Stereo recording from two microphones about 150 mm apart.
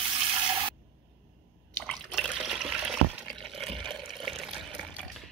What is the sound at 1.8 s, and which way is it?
Water, 5° left (ahead or behind).